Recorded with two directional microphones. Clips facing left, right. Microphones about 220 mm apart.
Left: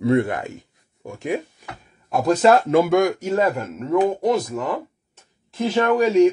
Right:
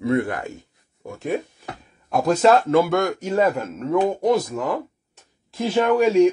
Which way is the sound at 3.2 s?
Centre (ahead or behind).